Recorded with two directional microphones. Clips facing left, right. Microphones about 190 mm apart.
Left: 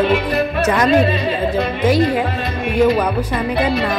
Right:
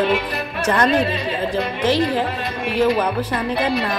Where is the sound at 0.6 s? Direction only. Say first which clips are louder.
Left 2 dB; 10° left (ahead or behind).